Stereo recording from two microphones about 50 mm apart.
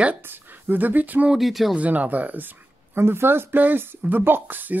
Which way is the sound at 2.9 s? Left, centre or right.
Right.